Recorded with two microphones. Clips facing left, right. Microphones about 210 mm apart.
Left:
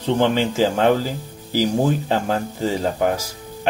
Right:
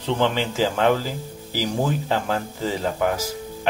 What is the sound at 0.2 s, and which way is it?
Speech, 45° left (ahead or behind).